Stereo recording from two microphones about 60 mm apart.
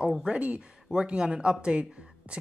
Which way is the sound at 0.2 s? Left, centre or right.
Centre.